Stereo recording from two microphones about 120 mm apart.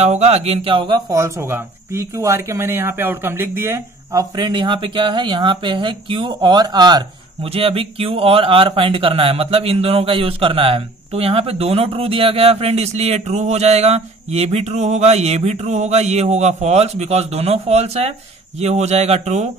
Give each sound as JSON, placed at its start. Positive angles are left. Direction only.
{"t": 0.0, "sound": "speech", "side_deg": -65}
{"t": 1.1, "sound": "speech", "side_deg": -25}
{"t": 7.5, "sound": "speech", "side_deg": -50}